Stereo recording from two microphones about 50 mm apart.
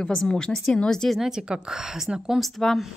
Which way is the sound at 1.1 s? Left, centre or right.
Centre.